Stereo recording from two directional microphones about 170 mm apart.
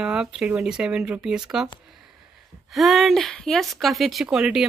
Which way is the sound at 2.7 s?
Centre (ahead or behind).